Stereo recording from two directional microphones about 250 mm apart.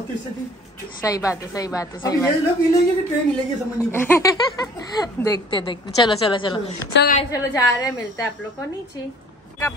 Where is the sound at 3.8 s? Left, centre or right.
Centre.